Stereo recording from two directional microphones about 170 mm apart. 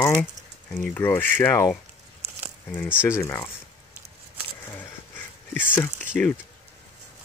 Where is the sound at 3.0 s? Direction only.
15° left (ahead or behind).